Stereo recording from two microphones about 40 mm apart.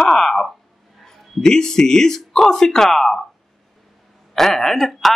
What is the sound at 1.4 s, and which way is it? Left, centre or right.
Speech, centre.